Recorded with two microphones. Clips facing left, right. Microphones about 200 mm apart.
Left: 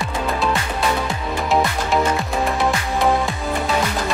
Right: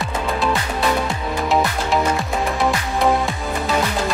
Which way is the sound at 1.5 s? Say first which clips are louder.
Even; centre (ahead or behind).